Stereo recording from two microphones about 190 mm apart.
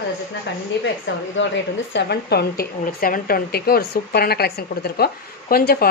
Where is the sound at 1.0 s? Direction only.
75° left (ahead or behind).